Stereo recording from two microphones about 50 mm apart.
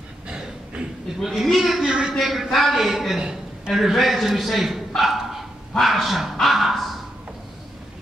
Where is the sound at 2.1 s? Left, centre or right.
Centre.